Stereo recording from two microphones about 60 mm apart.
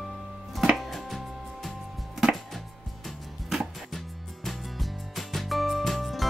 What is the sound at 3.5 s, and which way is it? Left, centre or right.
Music, centre.